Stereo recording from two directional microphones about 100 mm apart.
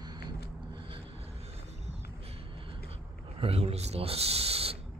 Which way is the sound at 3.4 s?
85° right.